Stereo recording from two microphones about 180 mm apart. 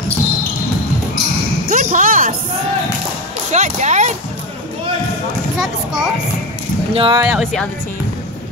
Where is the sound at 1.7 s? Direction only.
45° right (ahead or behind).